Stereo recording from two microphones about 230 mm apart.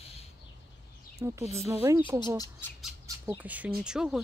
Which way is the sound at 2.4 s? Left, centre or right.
Centre.